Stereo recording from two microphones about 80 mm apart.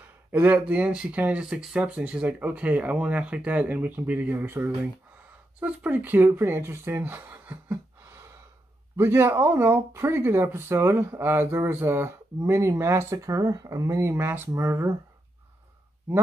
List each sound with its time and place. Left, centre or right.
0.3 s speech: right
8.9 s speech: right